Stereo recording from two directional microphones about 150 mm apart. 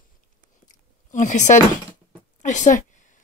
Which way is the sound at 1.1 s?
55° left (ahead or behind).